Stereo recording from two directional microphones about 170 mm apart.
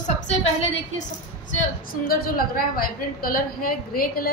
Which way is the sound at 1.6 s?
60° left (ahead or behind).